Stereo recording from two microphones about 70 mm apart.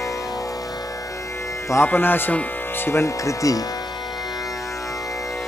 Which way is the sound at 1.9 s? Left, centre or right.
Left.